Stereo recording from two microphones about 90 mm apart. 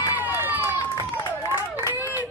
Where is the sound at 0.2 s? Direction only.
20° right (ahead or behind).